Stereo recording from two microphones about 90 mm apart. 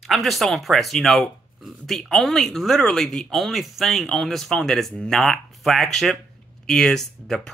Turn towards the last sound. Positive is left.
turn(degrees=5)  # may be behind; listen again after turning